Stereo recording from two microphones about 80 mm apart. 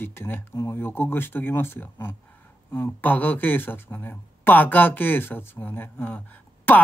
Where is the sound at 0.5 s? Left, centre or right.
Left.